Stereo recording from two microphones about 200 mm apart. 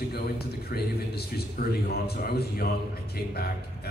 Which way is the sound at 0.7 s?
50° left (ahead or behind).